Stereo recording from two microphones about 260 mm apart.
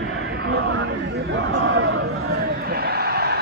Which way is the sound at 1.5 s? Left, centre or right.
Right.